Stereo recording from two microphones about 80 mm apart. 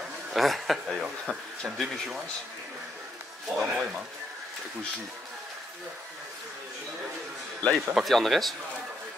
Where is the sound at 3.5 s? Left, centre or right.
Centre.